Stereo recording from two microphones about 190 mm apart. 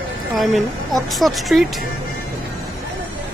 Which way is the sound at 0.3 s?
Centre (ahead or behind).